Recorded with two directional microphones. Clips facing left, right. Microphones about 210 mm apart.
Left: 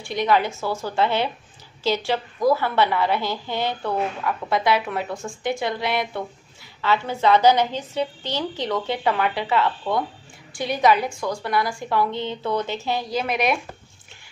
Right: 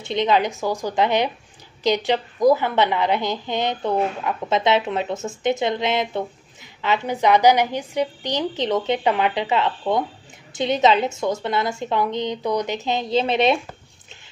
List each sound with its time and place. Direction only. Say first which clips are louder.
0.0 s a woman's voice: right 1 dB; 20° right (ahead or behind)